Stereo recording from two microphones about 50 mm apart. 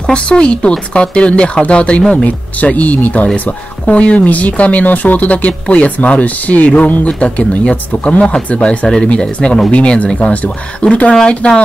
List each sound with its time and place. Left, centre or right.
0.0 s speech: centre